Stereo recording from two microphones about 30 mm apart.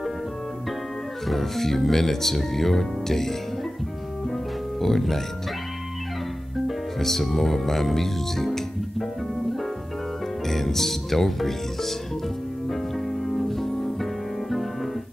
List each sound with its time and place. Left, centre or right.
1.2 s speech: centre
4.7 s speech: centre
7.0 s speech: centre
10.5 s speech: centre
12.6 s music: centre